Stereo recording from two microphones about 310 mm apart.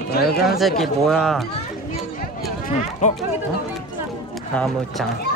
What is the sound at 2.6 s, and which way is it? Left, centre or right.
Run, left.